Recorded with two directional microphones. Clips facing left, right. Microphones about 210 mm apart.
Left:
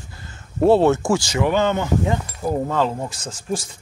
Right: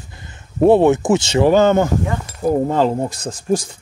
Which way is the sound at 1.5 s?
45° right (ahead or behind).